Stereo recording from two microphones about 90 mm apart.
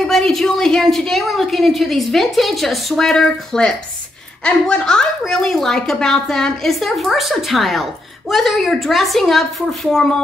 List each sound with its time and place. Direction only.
0.0 s a woman's voice: 5° left (ahead or behind)